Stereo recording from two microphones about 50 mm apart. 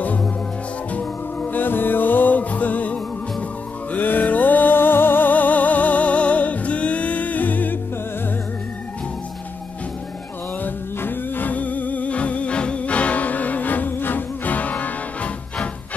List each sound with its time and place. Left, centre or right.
0.9 s music: left
10.6 s music: left